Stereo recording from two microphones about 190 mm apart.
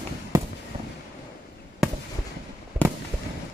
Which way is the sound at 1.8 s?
Centre (ahead or behind).